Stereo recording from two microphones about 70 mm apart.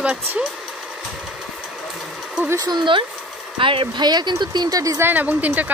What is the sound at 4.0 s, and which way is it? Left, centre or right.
Speech, right.